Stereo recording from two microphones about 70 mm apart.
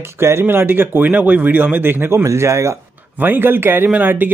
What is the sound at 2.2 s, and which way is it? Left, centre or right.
Speech, right.